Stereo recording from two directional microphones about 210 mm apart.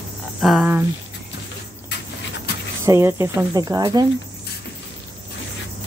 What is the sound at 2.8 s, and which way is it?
Speech, 10° right (ahead or behind).